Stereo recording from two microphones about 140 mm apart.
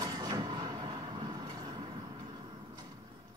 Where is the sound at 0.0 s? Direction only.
30° right (ahead or behind).